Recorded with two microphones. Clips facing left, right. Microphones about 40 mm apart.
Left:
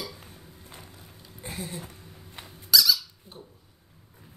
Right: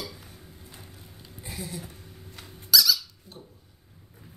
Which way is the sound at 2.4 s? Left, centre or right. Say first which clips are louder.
Even; centre.